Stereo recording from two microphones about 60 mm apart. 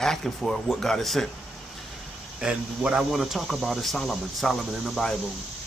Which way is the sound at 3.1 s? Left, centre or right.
Centre.